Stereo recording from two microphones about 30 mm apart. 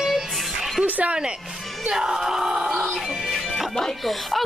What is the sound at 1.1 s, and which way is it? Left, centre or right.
Speech, right.